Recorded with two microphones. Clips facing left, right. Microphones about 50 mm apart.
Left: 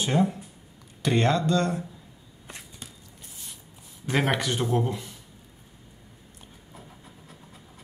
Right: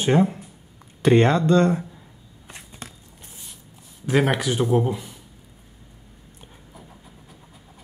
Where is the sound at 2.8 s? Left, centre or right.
Right.